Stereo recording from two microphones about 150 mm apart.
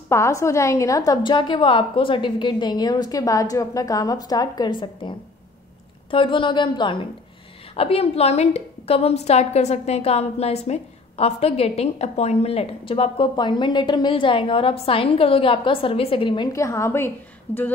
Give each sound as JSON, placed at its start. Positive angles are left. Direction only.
{"t": 0.1, "sound": "a woman's voice", "side_deg": 20}
{"t": 16.5, "sound": "a woman's voice", "side_deg": 20}